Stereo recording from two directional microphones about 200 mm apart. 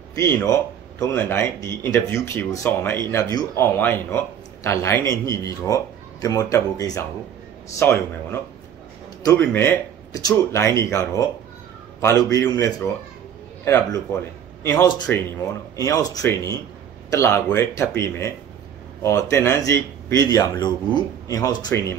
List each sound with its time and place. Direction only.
0.1 s a man's voice: 10° left (ahead or behind)
9.5 s speech: 15° left (ahead or behind)
14.6 s speech: 15° left (ahead or behind)